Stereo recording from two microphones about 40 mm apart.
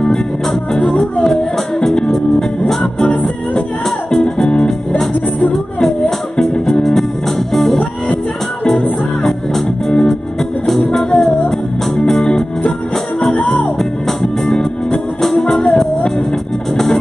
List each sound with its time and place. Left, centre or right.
0.7 s music: centre
9.2 s music: centre
13.7 s music: centre